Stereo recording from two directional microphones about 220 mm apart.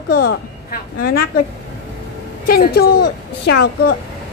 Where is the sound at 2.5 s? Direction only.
45° left (ahead or behind).